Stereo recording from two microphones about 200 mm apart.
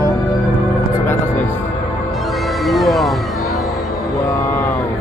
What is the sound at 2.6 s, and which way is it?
Music, centre (ahead or behind).